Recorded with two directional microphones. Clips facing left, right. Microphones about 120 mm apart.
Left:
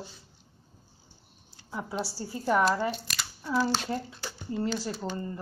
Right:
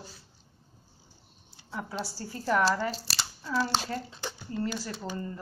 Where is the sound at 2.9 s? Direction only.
35° right (ahead or behind).